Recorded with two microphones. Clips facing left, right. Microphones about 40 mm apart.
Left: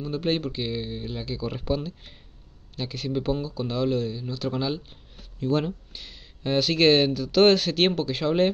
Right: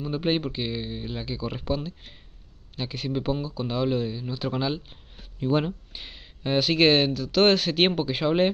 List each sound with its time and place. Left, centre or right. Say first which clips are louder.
0.0 s speech: right 1 dB; centre
6.4 s speech: even; centre